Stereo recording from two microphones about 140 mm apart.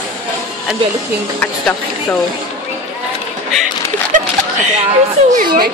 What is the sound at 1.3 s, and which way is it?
Speech, 10° left (ahead or behind).